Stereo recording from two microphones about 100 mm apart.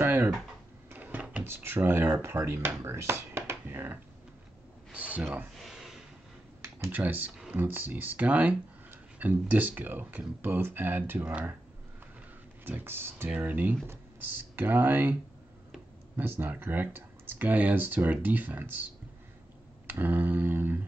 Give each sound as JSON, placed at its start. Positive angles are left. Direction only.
{"t": 0.0, "sound": "typing", "side_deg": -20}
{"t": 0.8, "sound": "speech", "side_deg": -15}
{"t": 5.6, "sound": "a sound", "side_deg": 0}
{"t": 6.6, "sound": "speech", "side_deg": -20}
{"t": 12.6, "sound": "speech", "side_deg": -20}
{"t": 16.2, "sound": "speech", "side_deg": -20}
{"t": 19.9, "sound": "speech", "side_deg": -20}